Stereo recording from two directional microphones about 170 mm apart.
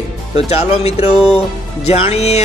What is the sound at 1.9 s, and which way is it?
Speech, 35° left (ahead or behind).